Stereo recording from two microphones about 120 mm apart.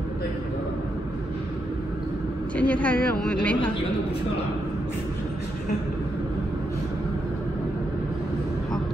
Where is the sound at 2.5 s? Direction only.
10° left (ahead or behind).